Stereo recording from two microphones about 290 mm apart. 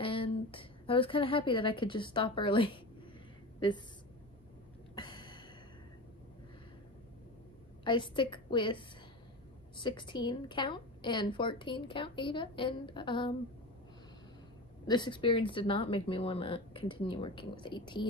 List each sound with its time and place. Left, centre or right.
0.0 s a woman's voice: centre
4.9 s a sound: centre
7.8 s a woman's voice: centre
14.9 s a woman's voice: centre